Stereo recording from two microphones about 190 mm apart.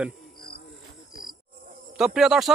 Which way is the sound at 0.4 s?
55° left (ahead or behind).